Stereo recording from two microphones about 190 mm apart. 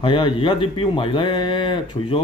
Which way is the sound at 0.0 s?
25° left (ahead or behind).